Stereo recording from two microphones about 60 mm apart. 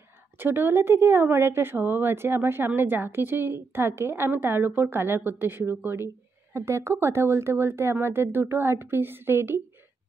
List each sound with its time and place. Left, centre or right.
0.4 s speech: right